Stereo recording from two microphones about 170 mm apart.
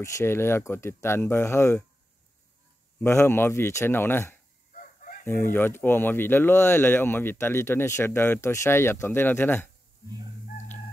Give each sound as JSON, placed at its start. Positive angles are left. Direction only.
{"t": 0.0, "sound": "speech", "side_deg": 15}
{"t": 3.0, "sound": "speech", "side_deg": 15}
{"t": 4.7, "sound": "chicken", "side_deg": 50}
{"t": 5.2, "sound": "speech", "side_deg": 15}